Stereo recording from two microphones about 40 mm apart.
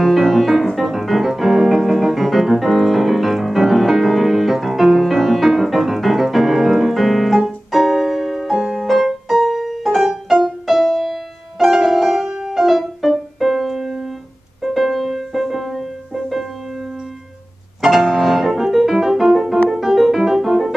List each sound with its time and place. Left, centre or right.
0.0 s music: centre
17.8 s music: centre